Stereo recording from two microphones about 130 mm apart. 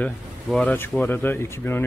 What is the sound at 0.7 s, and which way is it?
Speech, 15° left (ahead or behind).